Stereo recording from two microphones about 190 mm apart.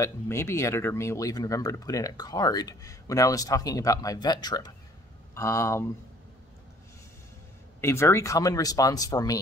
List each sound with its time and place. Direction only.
0.0 s speech: 15° left (ahead or behind)
7.8 s speech: 15° left (ahead or behind)